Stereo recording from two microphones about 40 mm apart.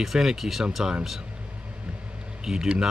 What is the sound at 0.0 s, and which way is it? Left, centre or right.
Speech, centre.